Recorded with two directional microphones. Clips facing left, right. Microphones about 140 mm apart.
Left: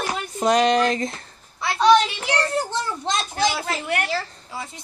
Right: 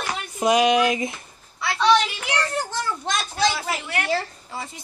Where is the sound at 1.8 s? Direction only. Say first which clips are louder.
Left 3 dB; 35° left (ahead or behind).